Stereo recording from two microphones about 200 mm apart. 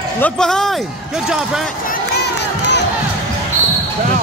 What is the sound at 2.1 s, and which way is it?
Crowd, 55° left (ahead or behind).